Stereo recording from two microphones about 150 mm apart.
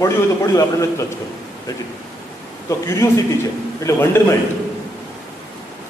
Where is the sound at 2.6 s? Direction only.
20° left (ahead or behind).